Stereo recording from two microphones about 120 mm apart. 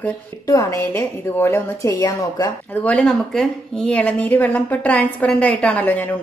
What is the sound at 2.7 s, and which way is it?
Speech, 10° left (ahead or behind).